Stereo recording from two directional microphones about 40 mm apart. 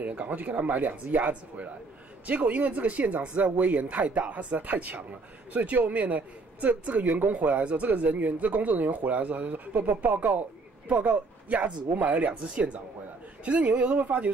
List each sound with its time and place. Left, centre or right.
0.0 s speech: right
13.5 s speech: right